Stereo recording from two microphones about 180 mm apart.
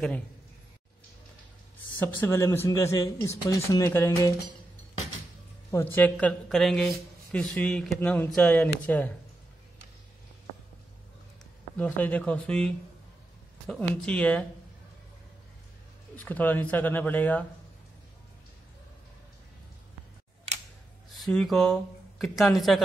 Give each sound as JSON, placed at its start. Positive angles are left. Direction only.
{"t": 2.0, "sound": "speech", "side_deg": 10}
{"t": 5.7, "sound": "speech", "side_deg": 15}
{"t": 11.7, "sound": "speech", "side_deg": 10}
{"t": 16.2, "sound": "speech", "side_deg": 10}
{"t": 21.1, "sound": "speech", "side_deg": 0}